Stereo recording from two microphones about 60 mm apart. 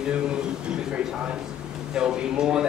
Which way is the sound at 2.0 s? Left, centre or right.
Centre.